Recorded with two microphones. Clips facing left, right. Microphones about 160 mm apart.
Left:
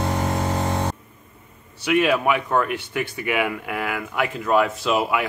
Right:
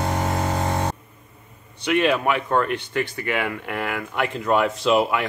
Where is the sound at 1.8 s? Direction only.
5° left (ahead or behind).